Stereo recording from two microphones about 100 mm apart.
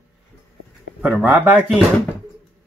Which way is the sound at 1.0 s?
15° right (ahead or behind).